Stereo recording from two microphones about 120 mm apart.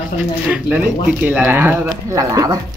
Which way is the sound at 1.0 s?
10° right (ahead or behind).